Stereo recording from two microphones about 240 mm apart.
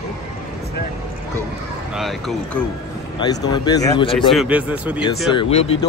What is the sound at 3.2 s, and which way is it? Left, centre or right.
Speech, centre.